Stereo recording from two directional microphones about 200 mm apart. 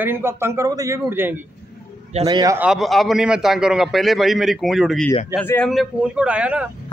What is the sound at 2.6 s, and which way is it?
A man's voice, centre (ahead or behind).